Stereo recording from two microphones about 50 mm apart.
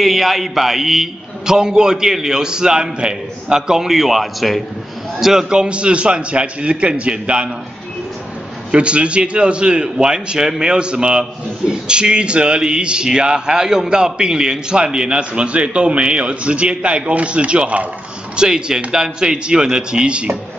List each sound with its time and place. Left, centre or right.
0.0 s a man's voice: centre
5.2 s a man's voice: centre
8.7 s a man's voice: right